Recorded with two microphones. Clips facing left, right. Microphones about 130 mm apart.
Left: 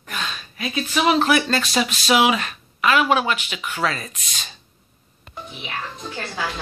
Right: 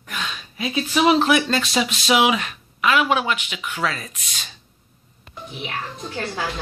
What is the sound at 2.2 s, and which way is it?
Speech, 10° right (ahead or behind).